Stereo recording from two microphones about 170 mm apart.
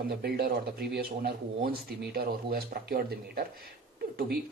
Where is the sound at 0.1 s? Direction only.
65° right (ahead or behind).